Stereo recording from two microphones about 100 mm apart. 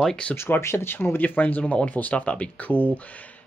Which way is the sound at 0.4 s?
25° left (ahead or behind).